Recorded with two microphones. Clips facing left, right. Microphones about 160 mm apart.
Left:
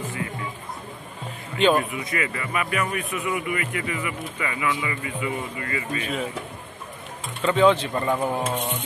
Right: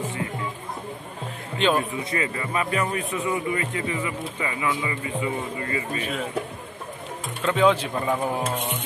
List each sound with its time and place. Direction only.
1.8 s a man's voice: 30° right (ahead or behind)
7.4 s speech: centre (ahead or behind)